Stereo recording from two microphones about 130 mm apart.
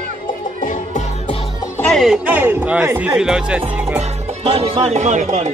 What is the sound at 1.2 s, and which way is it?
Music, 45° left (ahead or behind).